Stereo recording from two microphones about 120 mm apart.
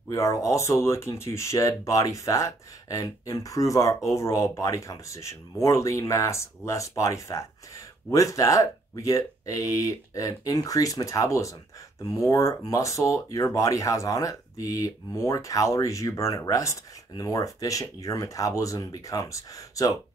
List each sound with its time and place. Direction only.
0.1 s speech: 25° left (ahead or behind)